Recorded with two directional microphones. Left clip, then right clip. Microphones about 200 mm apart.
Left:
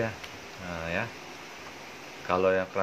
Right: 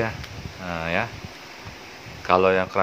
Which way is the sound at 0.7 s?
30° right (ahead or behind).